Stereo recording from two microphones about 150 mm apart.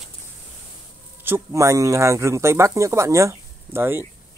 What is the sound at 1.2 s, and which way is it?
Speech, 15° right (ahead or behind).